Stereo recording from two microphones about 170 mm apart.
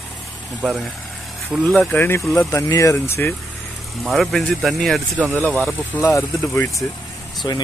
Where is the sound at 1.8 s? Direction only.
10° left (ahead or behind).